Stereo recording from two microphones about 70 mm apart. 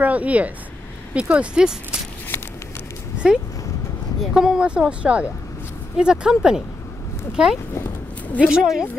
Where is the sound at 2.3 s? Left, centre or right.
Left.